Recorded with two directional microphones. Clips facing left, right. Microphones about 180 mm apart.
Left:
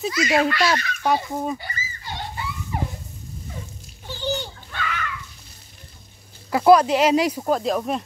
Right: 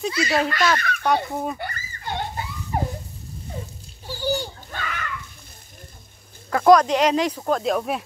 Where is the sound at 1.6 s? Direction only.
55° right (ahead or behind).